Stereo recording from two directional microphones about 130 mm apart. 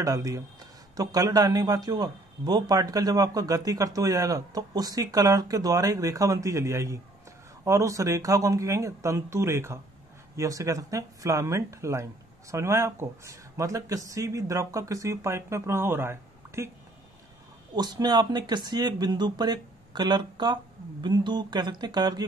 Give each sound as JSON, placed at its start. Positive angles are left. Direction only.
{"t": 0.0, "sound": "speech", "side_deg": -25}
{"t": 17.7, "sound": "speech", "side_deg": -35}